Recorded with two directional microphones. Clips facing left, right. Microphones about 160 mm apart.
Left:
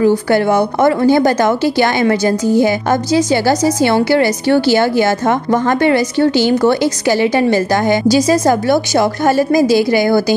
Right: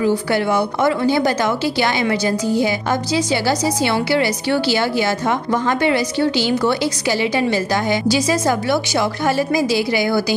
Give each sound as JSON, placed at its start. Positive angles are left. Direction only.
{"t": 0.0, "sound": "a woman's voice", "side_deg": 45}